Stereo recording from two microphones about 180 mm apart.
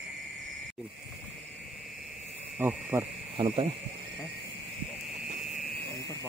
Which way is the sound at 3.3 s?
30° right (ahead or behind).